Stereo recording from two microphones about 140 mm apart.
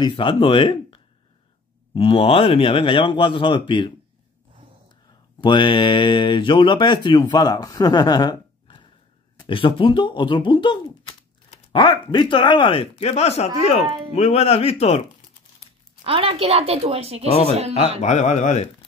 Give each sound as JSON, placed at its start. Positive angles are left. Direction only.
{"t": 0.0, "sound": "speech", "side_deg": 35}
{"t": 5.4, "sound": "speech", "side_deg": 35}
{"t": 16.0, "sound": "a woman's voice", "side_deg": -40}
{"t": 18.0, "sound": "speech", "side_deg": 55}